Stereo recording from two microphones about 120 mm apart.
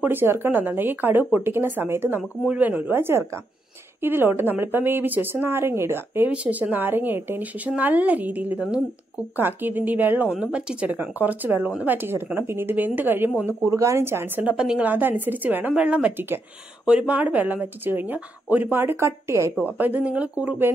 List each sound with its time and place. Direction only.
0.0 s a woman's voice: 20° right (ahead or behind)